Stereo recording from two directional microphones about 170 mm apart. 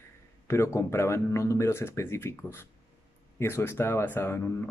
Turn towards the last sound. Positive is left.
turn(degrees=15)  # may be behind; listen again after turning